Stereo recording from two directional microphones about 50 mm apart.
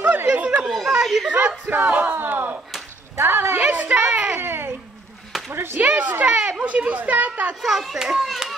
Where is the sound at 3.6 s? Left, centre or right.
Right.